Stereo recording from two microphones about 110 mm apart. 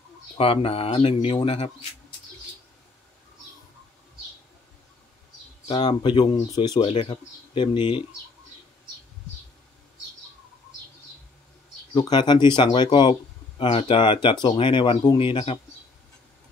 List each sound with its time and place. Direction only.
0.4 s speech: 60° left (ahead or behind)
5.7 s speech: 45° left (ahead or behind)
6.9 s speech: 70° left (ahead or behind)
7.5 s speech: 50° left (ahead or behind)
11.9 s speech: 40° left (ahead or behind)
13.6 s speech: 55° left (ahead or behind)